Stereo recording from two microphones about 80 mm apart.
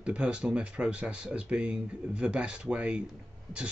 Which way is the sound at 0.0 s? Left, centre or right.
Centre.